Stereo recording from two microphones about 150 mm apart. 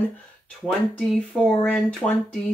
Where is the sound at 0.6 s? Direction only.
Centre (ahead or behind).